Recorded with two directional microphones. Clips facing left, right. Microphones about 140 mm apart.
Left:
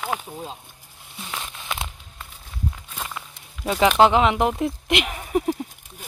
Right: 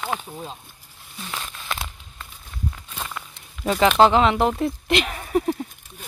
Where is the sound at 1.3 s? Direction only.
15° left (ahead or behind).